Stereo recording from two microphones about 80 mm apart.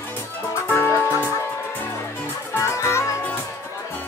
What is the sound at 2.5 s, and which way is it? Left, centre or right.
Music, left.